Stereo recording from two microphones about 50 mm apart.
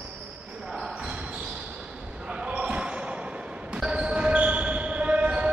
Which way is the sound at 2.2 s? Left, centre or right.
Right.